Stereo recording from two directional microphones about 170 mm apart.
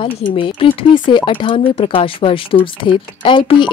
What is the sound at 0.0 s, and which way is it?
Speech, 30° left (ahead or behind).